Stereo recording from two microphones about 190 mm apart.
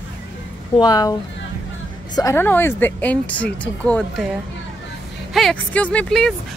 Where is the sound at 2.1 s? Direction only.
15° left (ahead or behind).